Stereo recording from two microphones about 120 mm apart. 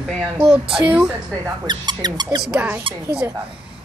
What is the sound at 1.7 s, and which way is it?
Speech, 35° right (ahead or behind).